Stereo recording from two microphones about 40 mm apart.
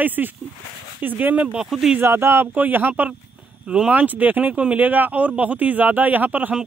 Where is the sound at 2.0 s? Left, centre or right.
Right.